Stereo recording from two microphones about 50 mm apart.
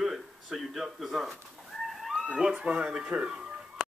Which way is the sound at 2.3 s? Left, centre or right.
Right.